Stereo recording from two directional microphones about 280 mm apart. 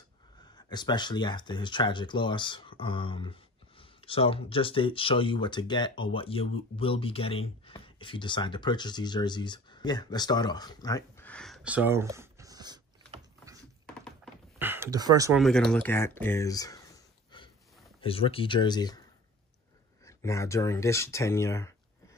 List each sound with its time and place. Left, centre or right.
0.6 s speech: centre
14.0 s a sound: centre
15.4 s speech: centre
20.1 s speech: centre